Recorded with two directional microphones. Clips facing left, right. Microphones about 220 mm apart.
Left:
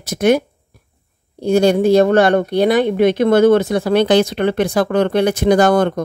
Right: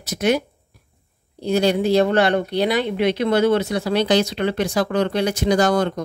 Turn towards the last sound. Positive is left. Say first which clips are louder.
# left 5 dB
turn(degrees=55)  # may be behind; listen again after turning